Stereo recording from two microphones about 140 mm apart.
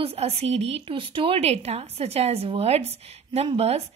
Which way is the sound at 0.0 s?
45° right (ahead or behind).